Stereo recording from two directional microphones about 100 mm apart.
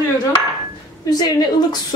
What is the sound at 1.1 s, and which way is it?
Speech, 45° left (ahead or behind).